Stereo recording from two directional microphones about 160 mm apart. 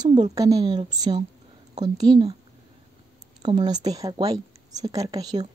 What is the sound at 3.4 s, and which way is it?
A woman's voice, 25° right (ahead or behind).